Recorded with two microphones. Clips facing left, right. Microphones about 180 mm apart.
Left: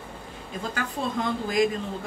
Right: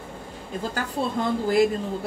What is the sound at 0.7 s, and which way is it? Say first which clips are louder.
Speech: right 2 dB; 35° right (ahead or behind).